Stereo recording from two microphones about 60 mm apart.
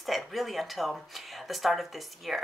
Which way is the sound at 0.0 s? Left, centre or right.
Centre.